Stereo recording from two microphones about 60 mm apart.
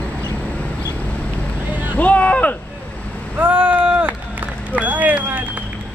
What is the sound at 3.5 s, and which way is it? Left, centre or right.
Vehicle, right.